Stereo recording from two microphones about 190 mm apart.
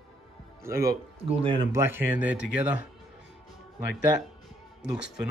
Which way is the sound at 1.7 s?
10° right (ahead or behind).